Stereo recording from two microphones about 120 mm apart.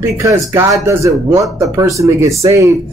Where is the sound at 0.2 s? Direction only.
25° right (ahead or behind).